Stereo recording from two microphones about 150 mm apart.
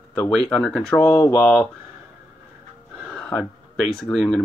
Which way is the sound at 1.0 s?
15° left (ahead or behind).